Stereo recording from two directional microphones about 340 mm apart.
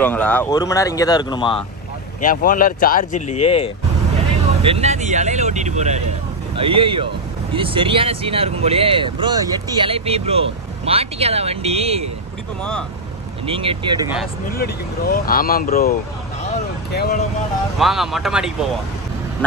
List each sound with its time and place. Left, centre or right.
0.0 s speech: centre
4.6 s speech: centre
13.5 s speech: centre
14.6 s speech: left
16.9 s speech: left
17.7 s speech: centre